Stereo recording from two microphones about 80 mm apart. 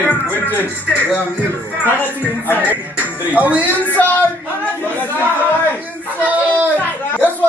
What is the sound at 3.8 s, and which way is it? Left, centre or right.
Speech, centre.